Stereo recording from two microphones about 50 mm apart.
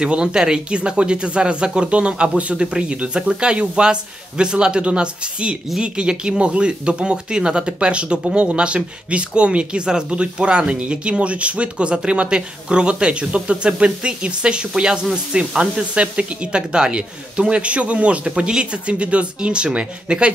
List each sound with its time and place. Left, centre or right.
0.0 s speech: centre